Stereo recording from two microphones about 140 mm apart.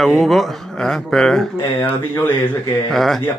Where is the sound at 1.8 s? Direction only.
15° left (ahead or behind).